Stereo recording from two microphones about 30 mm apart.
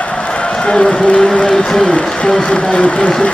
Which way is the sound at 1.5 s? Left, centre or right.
Left.